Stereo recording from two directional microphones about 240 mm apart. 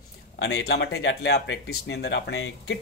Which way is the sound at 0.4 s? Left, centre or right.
Left.